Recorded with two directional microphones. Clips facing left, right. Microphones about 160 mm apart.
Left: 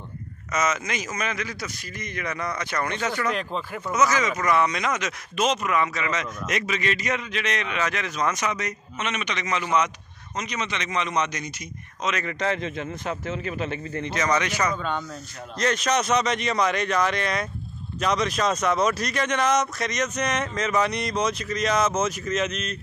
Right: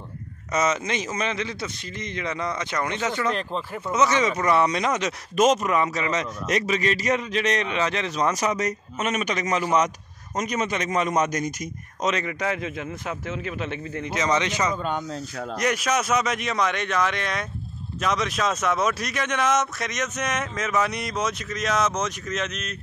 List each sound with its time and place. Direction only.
0.5 s a man's voice: 30° right (ahead or behind)
3.3 s speech: centre (ahead or behind)
3.9 s speech: 30° right (ahead or behind); by 11.5 s 45° right (ahead or behind)
12.3 s speech: 10° right (ahead or behind)
14.1 s a man's voice: 20° right (ahead or behind); by 22.8 s centre (ahead or behind)